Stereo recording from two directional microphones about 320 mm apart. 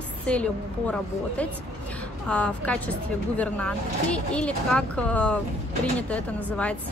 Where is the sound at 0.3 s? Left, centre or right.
Centre.